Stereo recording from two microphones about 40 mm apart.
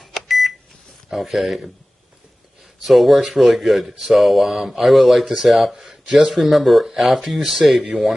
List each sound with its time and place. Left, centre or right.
0.0 s microwave oven: centre
1.1 s speech: centre
2.8 s speech: centre